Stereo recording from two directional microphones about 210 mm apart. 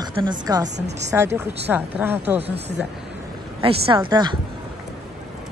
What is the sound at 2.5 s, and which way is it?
Speech, 50° right (ahead or behind).